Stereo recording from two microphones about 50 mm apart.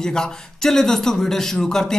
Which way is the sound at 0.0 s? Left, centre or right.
Centre.